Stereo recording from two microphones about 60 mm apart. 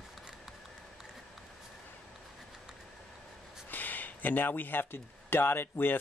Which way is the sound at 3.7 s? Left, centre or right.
Left.